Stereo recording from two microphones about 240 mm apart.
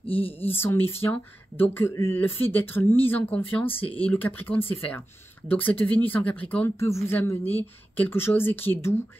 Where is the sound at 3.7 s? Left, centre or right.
Left.